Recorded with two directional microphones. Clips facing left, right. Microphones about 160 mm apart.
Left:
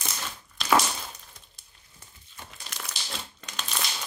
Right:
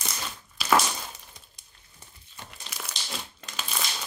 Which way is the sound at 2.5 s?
5° right (ahead or behind).